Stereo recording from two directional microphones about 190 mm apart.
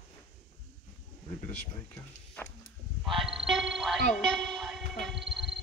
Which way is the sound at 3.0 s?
Centre (ahead or behind).